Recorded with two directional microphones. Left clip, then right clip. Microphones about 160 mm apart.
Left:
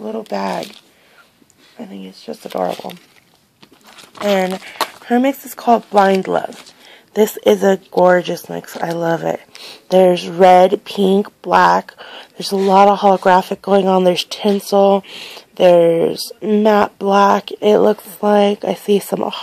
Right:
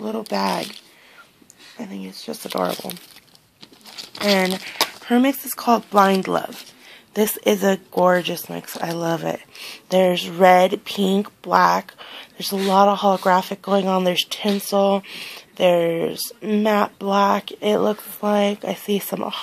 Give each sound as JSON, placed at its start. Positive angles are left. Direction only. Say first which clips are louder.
{"t": 0.0, "sound": "speech", "louder": "left 2 dB", "side_deg": 10}
{"t": 1.8, "sound": "speech", "louder": "left 1 dB", "side_deg": 10}
{"t": 3.9, "sound": "a sound", "louder": "left 3 dB", "side_deg": 0}
{"t": 5.0, "sound": "speech", "louder": "left 5 dB", "side_deg": 25}